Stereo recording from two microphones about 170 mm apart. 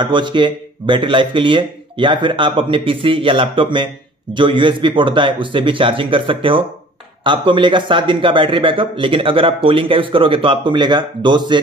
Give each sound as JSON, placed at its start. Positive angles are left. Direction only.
{"t": 0.0, "sound": "speech", "side_deg": -30}